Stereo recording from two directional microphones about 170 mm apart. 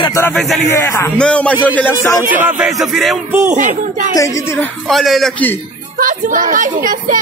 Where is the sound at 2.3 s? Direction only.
5° right (ahead or behind).